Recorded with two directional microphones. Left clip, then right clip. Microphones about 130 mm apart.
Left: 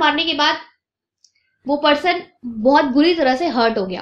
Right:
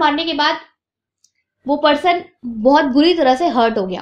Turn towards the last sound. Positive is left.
turn(degrees=-40)  # may be behind; listen again after turning